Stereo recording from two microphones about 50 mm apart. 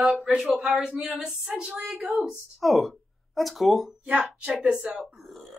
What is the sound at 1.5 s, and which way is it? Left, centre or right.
Speech, centre.